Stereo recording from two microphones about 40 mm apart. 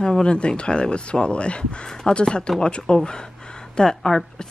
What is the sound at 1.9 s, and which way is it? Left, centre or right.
Speech, centre.